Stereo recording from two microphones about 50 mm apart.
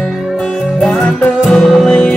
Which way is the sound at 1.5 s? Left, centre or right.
Centre.